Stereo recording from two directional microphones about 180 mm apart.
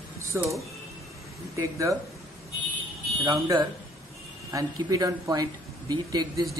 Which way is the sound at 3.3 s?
25° right (ahead or behind).